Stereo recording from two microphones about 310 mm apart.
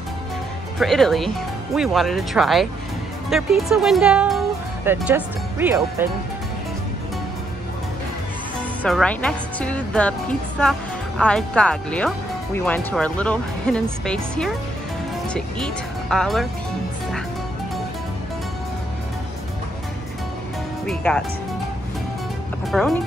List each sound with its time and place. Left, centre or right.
0.7 s speech: centre
8.8 s speech: centre
20.8 s speech: centre
22.7 s speech: centre